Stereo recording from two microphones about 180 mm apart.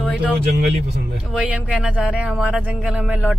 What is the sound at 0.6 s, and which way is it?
Speech, 75° right (ahead or behind).